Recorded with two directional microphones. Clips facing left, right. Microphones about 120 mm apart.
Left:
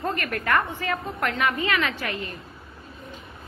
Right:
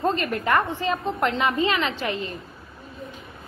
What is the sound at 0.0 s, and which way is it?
A woman's voice, 20° right (ahead or behind).